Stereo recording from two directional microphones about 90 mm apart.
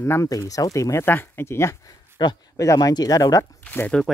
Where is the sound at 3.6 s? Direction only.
15° left (ahead or behind).